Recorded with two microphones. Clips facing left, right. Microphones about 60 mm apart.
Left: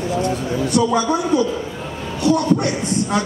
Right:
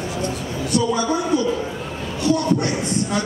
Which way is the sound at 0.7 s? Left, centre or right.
Left.